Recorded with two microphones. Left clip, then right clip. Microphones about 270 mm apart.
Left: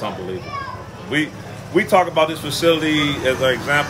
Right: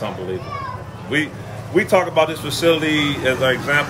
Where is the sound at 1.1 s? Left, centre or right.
Centre.